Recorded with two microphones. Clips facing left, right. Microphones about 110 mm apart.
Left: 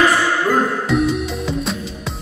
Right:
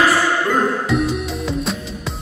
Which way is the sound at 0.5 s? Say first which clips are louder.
Left 1 dB; centre (ahead or behind).